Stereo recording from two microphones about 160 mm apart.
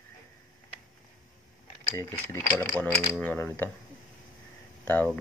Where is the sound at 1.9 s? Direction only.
15° left (ahead or behind).